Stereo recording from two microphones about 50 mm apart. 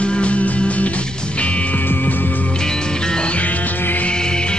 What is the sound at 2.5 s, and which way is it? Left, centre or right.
Music, centre.